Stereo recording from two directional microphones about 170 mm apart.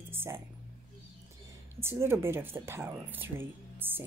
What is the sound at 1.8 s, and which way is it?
A woman's voice, 15° right (ahead or behind).